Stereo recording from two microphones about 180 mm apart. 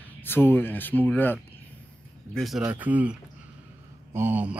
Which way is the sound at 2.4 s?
Centre (ahead or behind).